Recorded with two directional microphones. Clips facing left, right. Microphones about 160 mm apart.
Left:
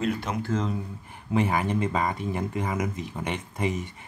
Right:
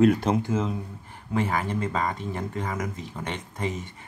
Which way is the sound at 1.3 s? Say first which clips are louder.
Left 2 dB; 15° left (ahead or behind).